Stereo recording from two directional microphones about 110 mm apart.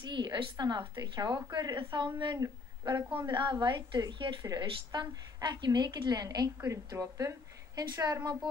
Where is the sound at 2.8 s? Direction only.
40° right (ahead or behind).